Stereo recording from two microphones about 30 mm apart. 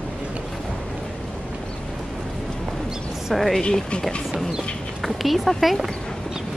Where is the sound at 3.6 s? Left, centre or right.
Left.